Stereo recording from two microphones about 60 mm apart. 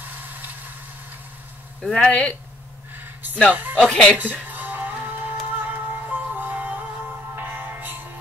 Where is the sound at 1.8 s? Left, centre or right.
Centre.